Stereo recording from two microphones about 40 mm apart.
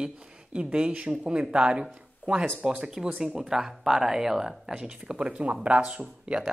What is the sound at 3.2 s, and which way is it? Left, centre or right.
Speech, centre.